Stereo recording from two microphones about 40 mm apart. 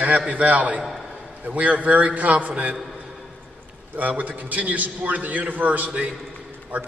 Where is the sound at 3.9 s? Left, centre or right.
Right.